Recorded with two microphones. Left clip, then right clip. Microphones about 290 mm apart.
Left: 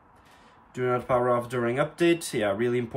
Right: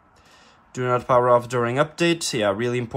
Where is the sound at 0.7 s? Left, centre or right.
Centre.